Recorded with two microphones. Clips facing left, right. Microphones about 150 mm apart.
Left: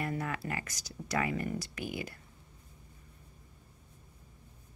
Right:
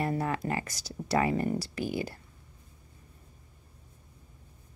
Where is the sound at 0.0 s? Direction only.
30° right (ahead or behind).